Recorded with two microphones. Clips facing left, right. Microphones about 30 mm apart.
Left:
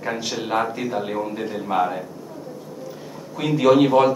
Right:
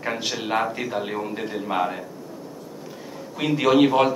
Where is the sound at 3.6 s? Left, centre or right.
Centre.